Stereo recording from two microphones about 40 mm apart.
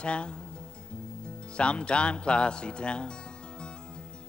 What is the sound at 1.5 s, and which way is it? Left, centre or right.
Speech, left.